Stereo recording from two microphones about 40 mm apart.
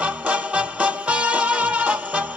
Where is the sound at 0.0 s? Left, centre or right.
Right.